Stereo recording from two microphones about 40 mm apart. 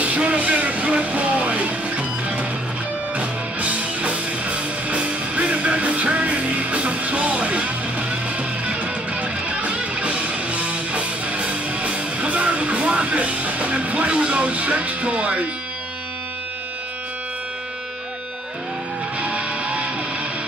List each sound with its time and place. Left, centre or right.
0.0 s music: right
19.1 s music: right